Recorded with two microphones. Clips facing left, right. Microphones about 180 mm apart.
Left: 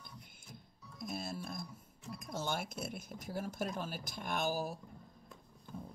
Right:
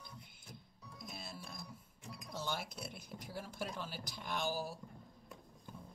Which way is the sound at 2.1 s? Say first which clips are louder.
Left 3 dB; 45° left (ahead or behind).